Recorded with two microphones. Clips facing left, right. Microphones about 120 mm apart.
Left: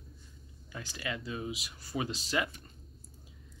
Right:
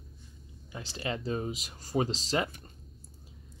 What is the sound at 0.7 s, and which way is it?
Speech, 30° right (ahead or behind).